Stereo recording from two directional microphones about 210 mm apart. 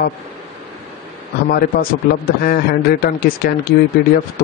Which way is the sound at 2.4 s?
45° left (ahead or behind).